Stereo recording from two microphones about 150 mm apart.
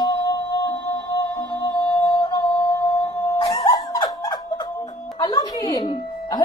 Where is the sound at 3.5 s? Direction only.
25° left (ahead or behind).